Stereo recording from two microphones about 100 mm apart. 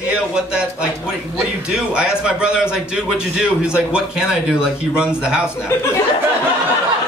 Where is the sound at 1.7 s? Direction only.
10° right (ahead or behind).